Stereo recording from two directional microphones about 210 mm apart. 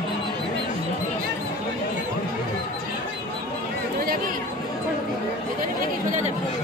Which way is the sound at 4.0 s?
45° right (ahead or behind).